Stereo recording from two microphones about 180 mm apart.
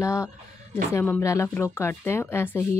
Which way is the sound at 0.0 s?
15° left (ahead or behind).